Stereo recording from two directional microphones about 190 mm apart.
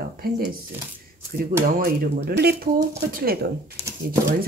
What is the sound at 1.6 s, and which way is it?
Speech, 50° right (ahead or behind).